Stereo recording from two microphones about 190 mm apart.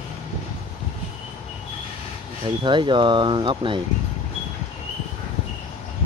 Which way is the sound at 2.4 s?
25° right (ahead or behind).